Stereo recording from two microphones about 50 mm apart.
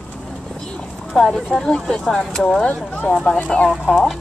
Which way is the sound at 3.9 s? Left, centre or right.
Centre.